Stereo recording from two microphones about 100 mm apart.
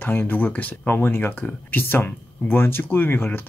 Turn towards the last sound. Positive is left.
turn(degrees=20)  # may be behind; listen again after turning